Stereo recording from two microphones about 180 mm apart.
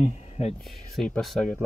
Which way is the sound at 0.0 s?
35° left (ahead or behind).